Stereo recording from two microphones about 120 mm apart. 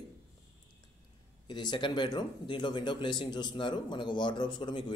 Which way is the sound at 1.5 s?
40° left (ahead or behind).